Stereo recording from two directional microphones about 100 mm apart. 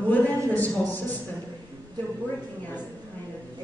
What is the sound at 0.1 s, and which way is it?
A man's voice, 15° left (ahead or behind).